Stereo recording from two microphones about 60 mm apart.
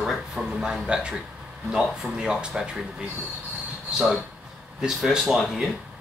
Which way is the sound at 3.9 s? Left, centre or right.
Centre.